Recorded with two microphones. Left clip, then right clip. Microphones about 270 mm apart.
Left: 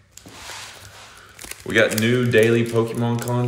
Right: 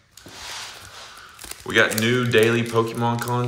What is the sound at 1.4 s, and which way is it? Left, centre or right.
Crumpling, centre.